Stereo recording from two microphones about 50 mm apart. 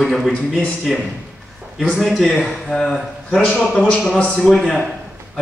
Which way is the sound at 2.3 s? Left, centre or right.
Centre.